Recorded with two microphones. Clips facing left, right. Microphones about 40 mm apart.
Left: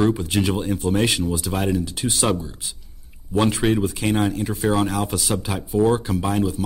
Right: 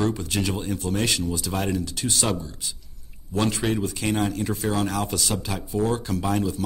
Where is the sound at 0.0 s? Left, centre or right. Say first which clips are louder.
Left 5 dB; centre.